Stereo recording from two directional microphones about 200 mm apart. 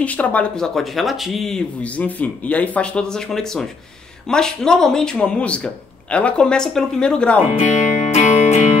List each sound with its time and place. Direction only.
0.0 s speech: 5° left (ahead or behind)
7.5 s music: 35° left (ahead or behind)